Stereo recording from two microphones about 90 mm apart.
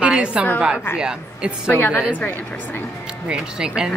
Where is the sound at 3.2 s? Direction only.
10° right (ahead or behind).